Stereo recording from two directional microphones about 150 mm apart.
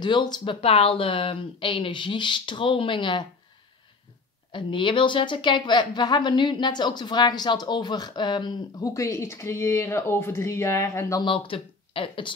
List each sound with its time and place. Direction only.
0.0 s speech: 30° left (ahead or behind)
4.5 s a woman's voice: 35° left (ahead or behind)
11.2 s speech: 35° left (ahead or behind)